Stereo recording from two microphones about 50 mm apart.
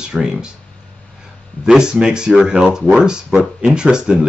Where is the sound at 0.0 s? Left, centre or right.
Centre.